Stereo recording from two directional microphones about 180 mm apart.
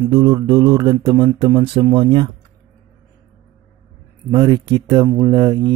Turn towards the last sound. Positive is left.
turn(degrees=-20)  # may be behind; listen again after turning